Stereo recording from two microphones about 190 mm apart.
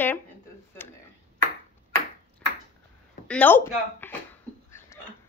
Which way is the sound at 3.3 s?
10° left (ahead or behind).